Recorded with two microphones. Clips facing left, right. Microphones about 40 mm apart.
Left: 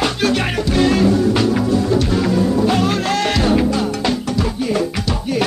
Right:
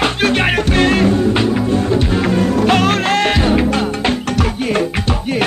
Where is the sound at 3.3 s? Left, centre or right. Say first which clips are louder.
Right 1 dB; right.